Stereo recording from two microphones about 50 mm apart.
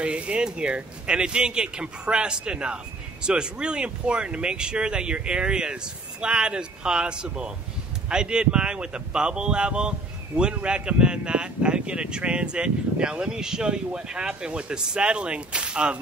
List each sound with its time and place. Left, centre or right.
0.0 s speech: right